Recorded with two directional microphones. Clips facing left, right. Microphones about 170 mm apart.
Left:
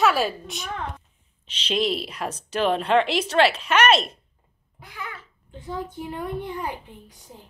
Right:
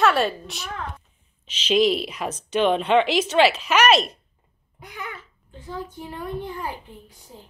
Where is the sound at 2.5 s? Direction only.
Centre (ahead or behind).